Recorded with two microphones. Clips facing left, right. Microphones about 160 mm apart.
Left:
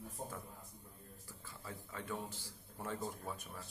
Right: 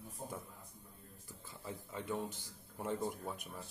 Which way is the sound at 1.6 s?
20° right (ahead or behind).